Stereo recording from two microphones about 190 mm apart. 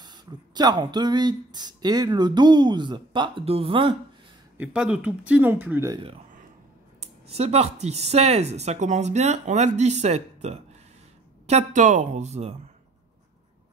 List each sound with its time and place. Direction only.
0.0 s speech: 20° right (ahead or behind)
4.6 s speech: 5° right (ahead or behind)
7.0 s speech: 35° right (ahead or behind)